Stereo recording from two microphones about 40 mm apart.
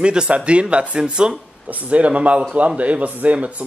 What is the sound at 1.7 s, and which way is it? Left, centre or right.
Speech, right.